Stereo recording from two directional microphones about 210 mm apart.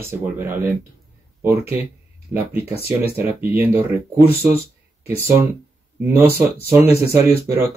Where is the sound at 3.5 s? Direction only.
10° right (ahead or behind).